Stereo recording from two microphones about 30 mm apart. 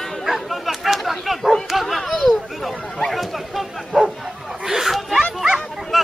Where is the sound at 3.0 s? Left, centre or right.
Centre.